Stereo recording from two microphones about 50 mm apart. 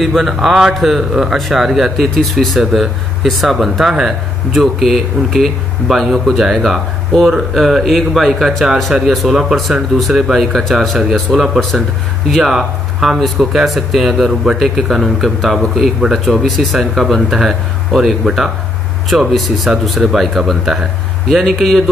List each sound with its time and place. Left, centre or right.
0.0 s a man's voice: centre
7.1 s speech: centre
7.5 s speech: centre
12.5 s speech: centre